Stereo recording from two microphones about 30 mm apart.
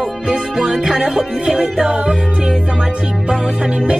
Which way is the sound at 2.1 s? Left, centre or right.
Right.